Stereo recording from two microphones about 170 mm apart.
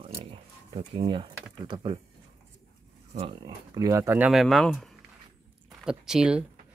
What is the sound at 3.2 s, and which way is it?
Speech, 30° right (ahead or behind).